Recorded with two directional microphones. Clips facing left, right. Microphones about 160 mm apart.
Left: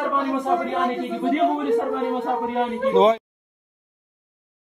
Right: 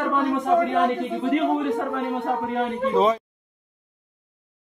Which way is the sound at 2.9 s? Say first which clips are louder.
Left 4 dB; 25° left (ahead or behind).